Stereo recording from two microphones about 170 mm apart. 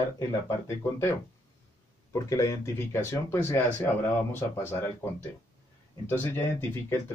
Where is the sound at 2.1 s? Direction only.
20° left (ahead or behind).